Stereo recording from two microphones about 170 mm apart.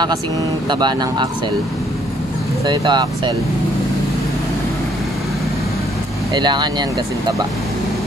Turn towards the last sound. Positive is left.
turn(degrees=-25)  # may be behind; listen again after turning